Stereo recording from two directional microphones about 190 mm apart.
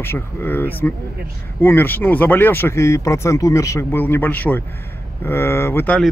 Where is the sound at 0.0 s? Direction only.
10° left (ahead or behind).